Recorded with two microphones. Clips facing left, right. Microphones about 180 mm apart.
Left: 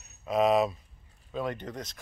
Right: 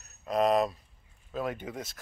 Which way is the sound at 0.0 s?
Centre (ahead or behind).